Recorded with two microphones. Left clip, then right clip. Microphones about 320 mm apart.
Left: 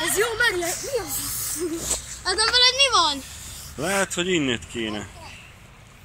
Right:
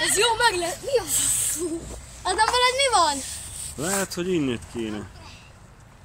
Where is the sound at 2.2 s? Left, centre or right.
Right.